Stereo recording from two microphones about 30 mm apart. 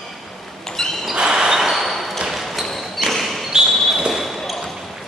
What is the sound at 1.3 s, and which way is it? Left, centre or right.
Basketball bounce, right.